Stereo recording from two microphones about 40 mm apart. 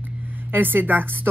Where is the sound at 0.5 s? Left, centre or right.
Right.